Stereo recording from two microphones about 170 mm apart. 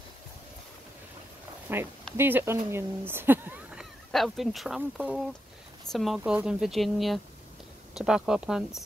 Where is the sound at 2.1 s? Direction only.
15° right (ahead or behind).